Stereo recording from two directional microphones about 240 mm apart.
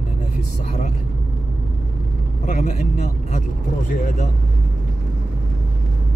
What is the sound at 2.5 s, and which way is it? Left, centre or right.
Speech, left.